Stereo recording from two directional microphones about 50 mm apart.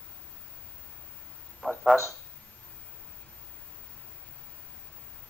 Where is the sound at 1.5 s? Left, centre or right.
Centre.